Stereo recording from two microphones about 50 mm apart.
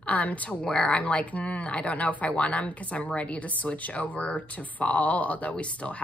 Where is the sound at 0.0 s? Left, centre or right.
Left.